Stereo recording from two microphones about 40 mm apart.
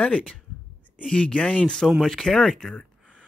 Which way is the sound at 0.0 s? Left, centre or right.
Left.